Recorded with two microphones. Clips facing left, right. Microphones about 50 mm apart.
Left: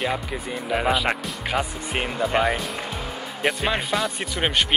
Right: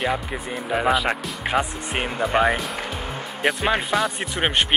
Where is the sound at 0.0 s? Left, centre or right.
Centre.